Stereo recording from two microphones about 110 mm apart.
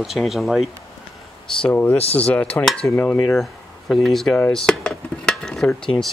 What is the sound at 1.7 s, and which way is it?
Speech, 20° left (ahead or behind).